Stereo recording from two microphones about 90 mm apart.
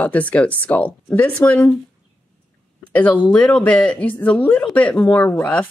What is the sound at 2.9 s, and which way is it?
Speech, 15° left (ahead or behind).